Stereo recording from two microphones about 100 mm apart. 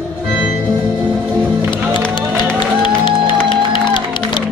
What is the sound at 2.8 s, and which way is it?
Music, 55° left (ahead or behind).